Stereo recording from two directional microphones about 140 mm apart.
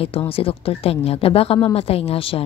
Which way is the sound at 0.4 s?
40° left (ahead or behind).